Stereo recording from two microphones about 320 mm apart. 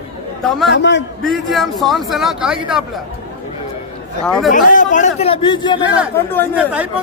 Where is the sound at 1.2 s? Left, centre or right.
Centre.